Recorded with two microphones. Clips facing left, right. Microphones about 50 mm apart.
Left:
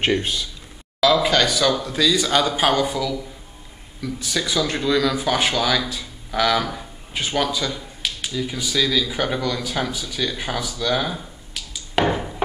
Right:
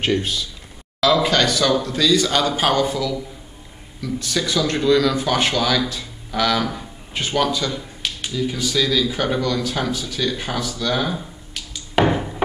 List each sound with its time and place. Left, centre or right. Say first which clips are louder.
0.0 s speech: even; left
1.0 s speech: even; centre